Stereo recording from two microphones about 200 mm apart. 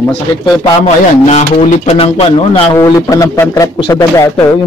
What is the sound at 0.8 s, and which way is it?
Speech, 35° left (ahead or behind).